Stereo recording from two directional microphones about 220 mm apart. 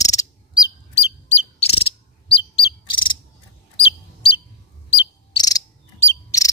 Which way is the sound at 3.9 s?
25° left (ahead or behind).